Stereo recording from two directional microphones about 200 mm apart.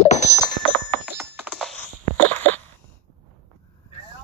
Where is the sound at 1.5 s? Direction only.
5° left (ahead or behind).